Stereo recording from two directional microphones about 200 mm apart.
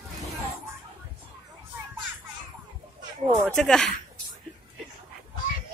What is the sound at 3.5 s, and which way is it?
Speech, 5° left (ahead or behind).